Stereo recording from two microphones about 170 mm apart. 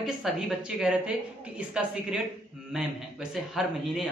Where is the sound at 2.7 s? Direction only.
Centre (ahead or behind).